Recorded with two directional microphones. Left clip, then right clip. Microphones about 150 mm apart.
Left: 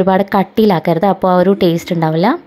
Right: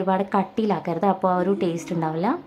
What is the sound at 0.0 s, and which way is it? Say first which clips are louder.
A woman's voice: left 10 dB; 40° left (ahead or behind).